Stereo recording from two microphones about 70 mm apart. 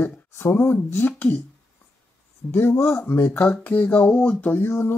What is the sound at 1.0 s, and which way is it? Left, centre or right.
Speech, left.